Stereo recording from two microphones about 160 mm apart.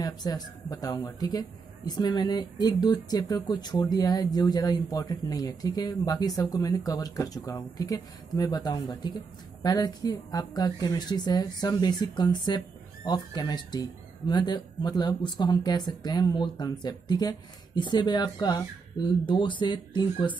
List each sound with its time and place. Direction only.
0.0 s speech: 25° left (ahead or behind)